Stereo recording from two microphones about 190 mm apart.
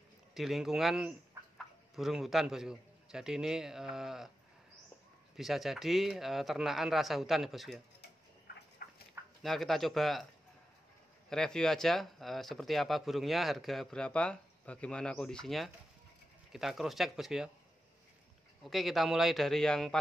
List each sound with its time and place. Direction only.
0.3 s speech: centre (ahead or behind)
1.4 s chicken: 15° right (ahead or behind)
2.0 s speech: centre (ahead or behind)
5.3 s speech: centre (ahead or behind)
8.8 s dog: 50° left (ahead or behind)
9.4 s speech: centre (ahead or behind)
11.2 s speech: 5° left (ahead or behind)
18.6 s speech: centre (ahead or behind)